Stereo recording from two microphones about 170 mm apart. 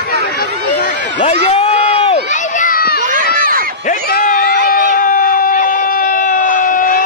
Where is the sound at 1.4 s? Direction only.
40° left (ahead or behind); by 3.0 s 60° left (ahead or behind).